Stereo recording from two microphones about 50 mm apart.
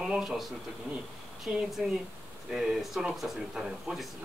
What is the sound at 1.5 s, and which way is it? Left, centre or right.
Speech, centre.